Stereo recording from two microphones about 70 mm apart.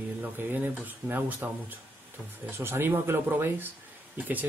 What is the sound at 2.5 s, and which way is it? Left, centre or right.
Speech, right.